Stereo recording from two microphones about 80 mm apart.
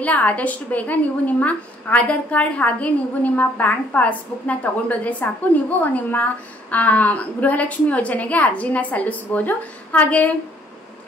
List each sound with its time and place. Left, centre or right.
0.0 s a woman's voice: centre